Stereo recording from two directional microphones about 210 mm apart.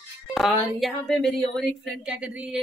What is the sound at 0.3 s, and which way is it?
A woman's voice, centre (ahead or behind).